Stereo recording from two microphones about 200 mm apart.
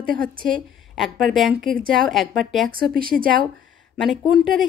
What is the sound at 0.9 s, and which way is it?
A woman's voice, centre (ahead or behind).